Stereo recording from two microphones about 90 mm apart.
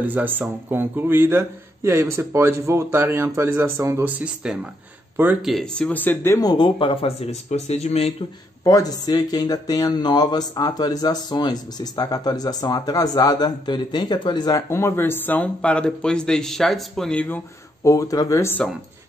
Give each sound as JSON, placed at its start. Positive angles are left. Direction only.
{"t": 0.0, "sound": "a man's voice", "side_deg": -20}
{"t": 4.2, "sound": "speech", "side_deg": -10}
{"t": 5.1, "sound": "speech", "side_deg": -20}
{"t": 5.4, "sound": "speech", "side_deg": 0}
{"t": 5.8, "sound": "speech", "side_deg": 15}
{"t": 6.3, "sound": "speech", "side_deg": 50}
{"t": 8.6, "sound": "speech", "side_deg": 45}
{"t": 14.7, "sound": "a man's voice", "side_deg": 30}
{"t": 17.8, "sound": "speech", "side_deg": 40}
{"t": 18.6, "sound": "a man's voice", "side_deg": 10}